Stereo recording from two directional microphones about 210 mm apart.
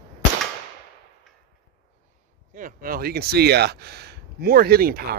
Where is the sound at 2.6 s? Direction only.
40° right (ahead or behind).